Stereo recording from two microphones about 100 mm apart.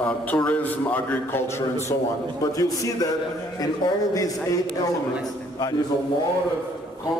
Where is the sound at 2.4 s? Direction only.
35° left (ahead or behind).